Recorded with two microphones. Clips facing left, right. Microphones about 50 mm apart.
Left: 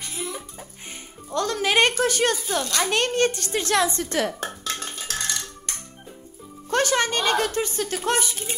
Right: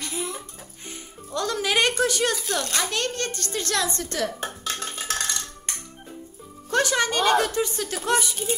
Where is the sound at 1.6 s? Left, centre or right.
Centre.